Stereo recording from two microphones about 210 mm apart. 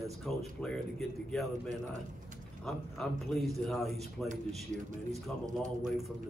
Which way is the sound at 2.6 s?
Centre (ahead or behind).